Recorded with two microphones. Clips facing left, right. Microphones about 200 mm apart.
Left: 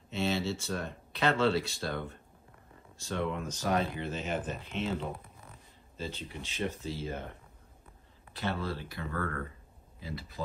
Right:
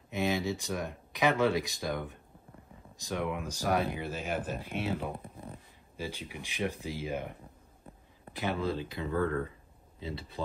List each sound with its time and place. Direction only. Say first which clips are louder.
0.1 s speech: right 1 dB; 15° right (ahead or behind)
8.3 s speech: right 3 dB; 15° right (ahead or behind)